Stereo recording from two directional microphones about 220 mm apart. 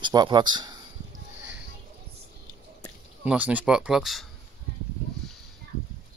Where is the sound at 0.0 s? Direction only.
20° right (ahead or behind).